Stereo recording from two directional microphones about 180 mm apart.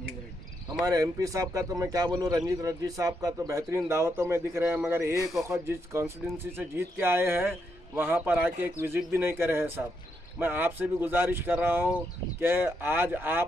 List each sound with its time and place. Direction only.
0.8 s speech: 20° right (ahead or behind)